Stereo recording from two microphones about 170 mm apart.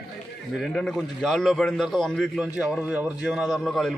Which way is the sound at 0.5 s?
5° left (ahead or behind).